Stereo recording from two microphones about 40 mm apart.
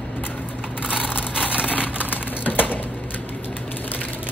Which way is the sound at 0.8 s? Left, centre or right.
Right.